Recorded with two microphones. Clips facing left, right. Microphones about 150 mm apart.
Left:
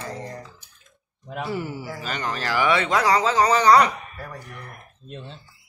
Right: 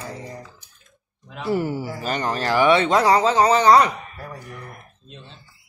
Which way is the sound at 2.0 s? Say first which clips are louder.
Right 4 dB; 35° right (ahead or behind).